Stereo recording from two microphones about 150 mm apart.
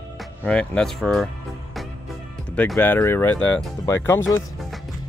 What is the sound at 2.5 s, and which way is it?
Speech, 10° left (ahead or behind).